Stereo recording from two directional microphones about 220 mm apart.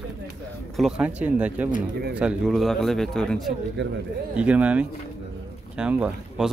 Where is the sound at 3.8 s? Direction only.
50° right (ahead or behind).